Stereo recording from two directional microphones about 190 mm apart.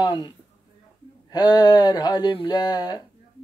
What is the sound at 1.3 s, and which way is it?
Speech, 20° left (ahead or behind).